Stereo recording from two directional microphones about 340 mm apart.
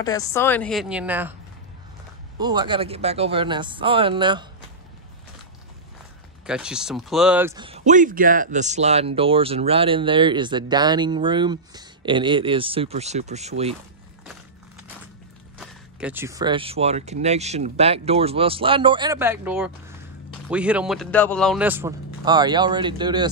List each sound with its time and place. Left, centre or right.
0.0 s speech: centre
2.3 s speech: centre
6.4 s speech: centre
15.6 s speech: centre